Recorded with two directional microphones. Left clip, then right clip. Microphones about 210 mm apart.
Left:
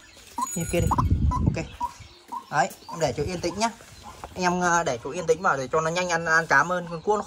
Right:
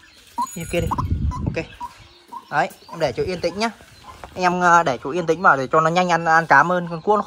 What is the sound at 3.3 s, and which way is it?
Speech, 35° left (ahead or behind).